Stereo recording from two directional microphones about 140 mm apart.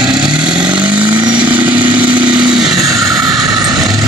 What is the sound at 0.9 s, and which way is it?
Vehicle, 35° right (ahead or behind).